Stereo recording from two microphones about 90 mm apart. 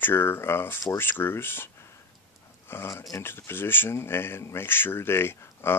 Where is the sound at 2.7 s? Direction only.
25° left (ahead or behind).